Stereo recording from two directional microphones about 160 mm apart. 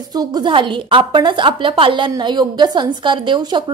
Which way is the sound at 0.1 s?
25° right (ahead or behind).